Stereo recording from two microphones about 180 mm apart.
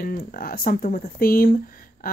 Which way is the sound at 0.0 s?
55° left (ahead or behind).